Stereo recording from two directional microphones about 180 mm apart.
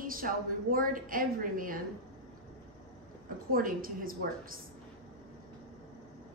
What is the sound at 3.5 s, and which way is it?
Speech, 50° right (ahead or behind).